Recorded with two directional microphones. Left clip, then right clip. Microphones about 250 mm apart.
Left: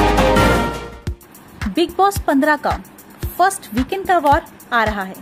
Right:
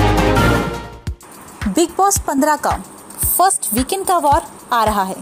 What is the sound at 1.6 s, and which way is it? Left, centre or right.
Speech, centre.